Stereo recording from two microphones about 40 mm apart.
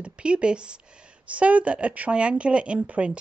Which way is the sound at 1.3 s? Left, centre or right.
Right.